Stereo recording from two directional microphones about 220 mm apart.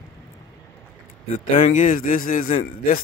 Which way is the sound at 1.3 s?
35° left (ahead or behind).